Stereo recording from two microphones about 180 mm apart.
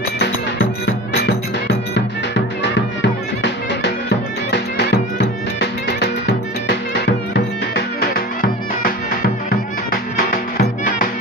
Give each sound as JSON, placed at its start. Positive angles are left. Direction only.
{"t": 0.8, "sound": "music", "side_deg": 65}
{"t": 7.1, "sound": "music", "side_deg": 70}